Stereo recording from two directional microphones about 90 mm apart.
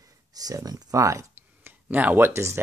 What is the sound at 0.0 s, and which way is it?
Speech, 45° right (ahead or behind).